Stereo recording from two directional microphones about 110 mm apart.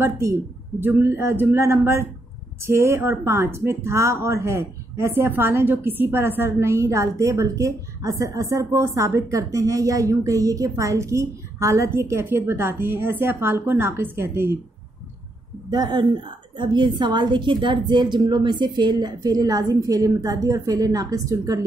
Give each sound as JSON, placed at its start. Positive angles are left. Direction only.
{"t": 0.0, "sound": "speech", "side_deg": -25}
{"t": 15.7, "sound": "a woman's voice", "side_deg": -40}